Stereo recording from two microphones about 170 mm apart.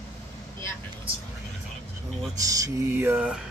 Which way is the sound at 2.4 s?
20° right (ahead or behind).